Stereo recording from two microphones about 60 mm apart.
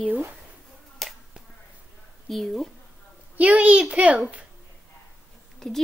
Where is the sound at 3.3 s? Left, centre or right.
Right.